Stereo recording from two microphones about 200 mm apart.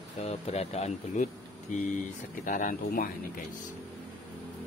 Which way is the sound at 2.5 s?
40° left (ahead or behind).